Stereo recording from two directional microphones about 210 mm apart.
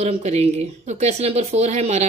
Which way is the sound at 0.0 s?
30° right (ahead or behind).